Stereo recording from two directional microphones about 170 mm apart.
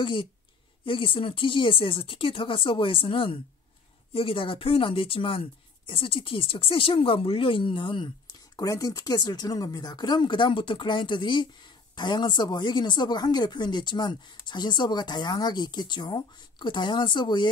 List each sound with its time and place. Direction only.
0.0 s speech: 30° left (ahead or behind)